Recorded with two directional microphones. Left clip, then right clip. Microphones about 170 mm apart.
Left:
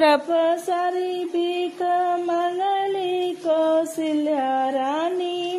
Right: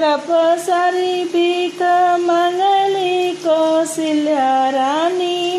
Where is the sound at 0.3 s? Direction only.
25° left (ahead or behind).